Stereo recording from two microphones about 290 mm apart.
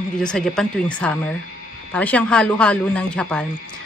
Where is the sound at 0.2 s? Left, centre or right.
Centre.